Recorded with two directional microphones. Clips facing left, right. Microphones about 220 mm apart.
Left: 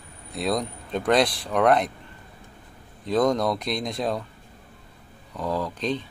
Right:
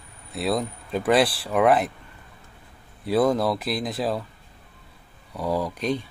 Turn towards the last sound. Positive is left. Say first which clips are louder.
# right 2 dB
turn(degrees=-10)  # may be behind; listen again after turning